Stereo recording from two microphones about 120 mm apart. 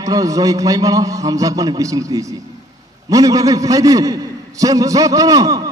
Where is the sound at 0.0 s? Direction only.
30° right (ahead or behind).